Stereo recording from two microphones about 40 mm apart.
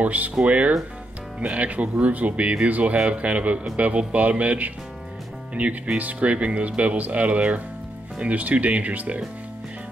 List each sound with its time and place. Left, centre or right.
0.0 s speech: right